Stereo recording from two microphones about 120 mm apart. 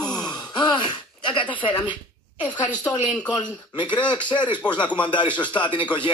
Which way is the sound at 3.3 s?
40° left (ahead or behind).